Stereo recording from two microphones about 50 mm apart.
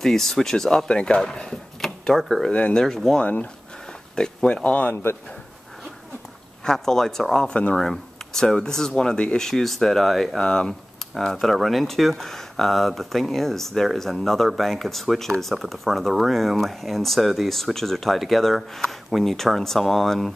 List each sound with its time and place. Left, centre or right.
0.0 s speech: centre
2.1 s speech: centre
2.5 s speech: left
2.8 s speech: centre
3.2 s speech: left
4.1 s speech: centre
4.8 s speech: left
6.6 s speech: centre